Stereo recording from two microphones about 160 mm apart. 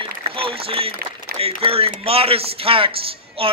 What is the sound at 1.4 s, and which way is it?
Speech, 35° right (ahead or behind).